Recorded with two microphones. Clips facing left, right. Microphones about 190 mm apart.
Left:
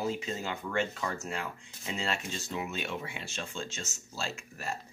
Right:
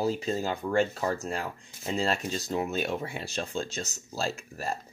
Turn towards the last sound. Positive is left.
turn(degrees=-35)  # may be behind; listen again after turning